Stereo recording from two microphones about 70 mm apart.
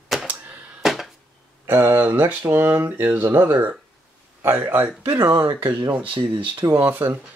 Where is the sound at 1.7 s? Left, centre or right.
Right.